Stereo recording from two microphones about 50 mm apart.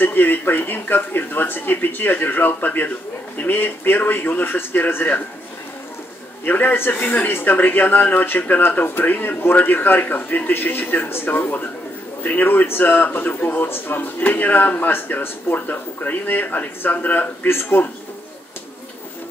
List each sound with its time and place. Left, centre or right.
0.0 s speech: left
6.4 s speech: left